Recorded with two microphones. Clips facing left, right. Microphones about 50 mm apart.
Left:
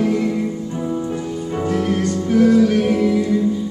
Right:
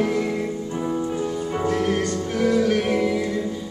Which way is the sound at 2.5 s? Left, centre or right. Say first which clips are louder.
Left 5 dB; centre.